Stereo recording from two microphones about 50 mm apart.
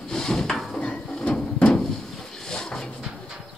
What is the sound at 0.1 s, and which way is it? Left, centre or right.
Drawer open or close, centre.